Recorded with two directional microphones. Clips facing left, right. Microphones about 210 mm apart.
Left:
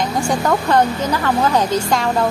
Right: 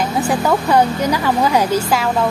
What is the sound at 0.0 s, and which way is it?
Speech, 5° right (ahead or behind).